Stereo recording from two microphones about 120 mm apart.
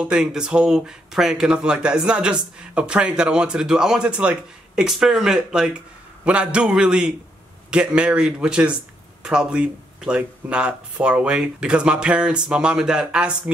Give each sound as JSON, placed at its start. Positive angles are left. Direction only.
{"t": 0.0, "sound": "speech", "side_deg": -5}